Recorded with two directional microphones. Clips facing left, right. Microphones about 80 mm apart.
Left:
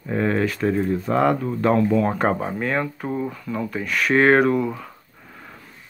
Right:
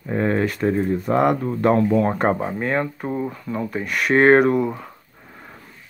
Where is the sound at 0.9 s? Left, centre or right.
Centre.